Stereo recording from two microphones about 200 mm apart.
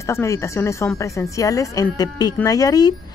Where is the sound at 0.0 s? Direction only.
15° left (ahead or behind).